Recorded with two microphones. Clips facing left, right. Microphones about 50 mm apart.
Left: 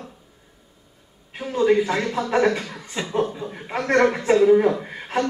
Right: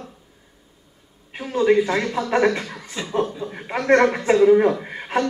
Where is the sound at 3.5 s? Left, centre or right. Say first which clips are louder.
Right 2 dB; centre.